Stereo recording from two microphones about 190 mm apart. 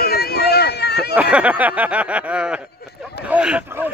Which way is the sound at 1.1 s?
5° right (ahead or behind).